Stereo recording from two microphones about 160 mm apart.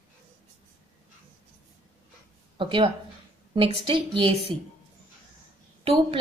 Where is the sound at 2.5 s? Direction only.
35° right (ahead or behind).